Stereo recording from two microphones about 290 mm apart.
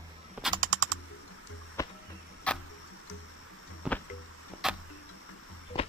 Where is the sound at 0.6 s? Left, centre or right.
Right.